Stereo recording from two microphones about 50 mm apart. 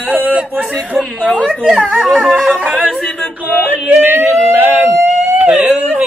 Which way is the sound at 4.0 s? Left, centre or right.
Right.